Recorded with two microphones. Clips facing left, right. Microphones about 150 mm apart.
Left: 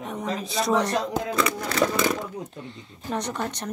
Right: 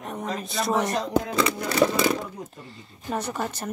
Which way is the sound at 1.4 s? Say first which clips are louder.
Right 1 dB; 30° right (ahead or behind).